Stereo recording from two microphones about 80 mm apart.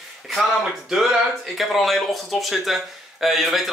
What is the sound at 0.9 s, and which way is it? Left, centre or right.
Speech, centre.